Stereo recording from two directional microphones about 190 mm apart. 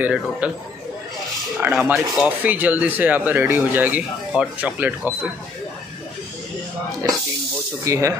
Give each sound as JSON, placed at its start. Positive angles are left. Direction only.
{"t": 0.0, "sound": "speech", "side_deg": -5}
{"t": 1.6, "sound": "speech", "side_deg": -5}
{"t": 7.8, "sound": "speech", "side_deg": -15}